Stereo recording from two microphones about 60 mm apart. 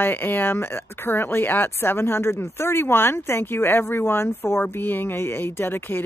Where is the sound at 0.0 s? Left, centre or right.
Left.